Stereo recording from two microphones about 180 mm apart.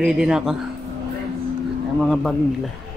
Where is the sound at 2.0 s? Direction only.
Centre (ahead or behind).